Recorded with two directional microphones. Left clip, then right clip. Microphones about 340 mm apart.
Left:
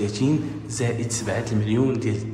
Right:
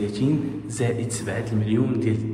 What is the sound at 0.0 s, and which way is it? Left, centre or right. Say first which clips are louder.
Speech: left 1 dB; centre.